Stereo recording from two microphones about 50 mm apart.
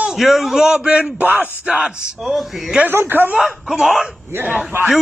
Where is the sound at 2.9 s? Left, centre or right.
Right.